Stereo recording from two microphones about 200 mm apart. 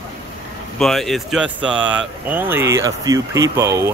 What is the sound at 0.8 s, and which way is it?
Speech, centre (ahead or behind).